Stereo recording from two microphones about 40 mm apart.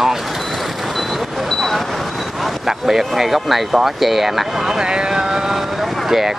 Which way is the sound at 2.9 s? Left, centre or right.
Centre.